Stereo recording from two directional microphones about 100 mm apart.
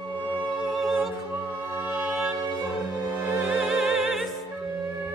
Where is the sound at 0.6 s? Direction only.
Centre (ahead or behind).